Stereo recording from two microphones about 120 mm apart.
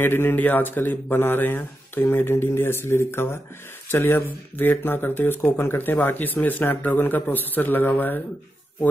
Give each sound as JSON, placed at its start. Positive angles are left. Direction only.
{"t": 0.0, "sound": "speech", "side_deg": 20}